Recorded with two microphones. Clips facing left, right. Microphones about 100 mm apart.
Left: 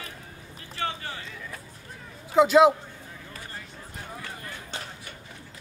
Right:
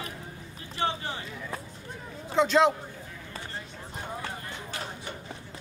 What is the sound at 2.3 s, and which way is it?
Speech, 10° left (ahead or behind).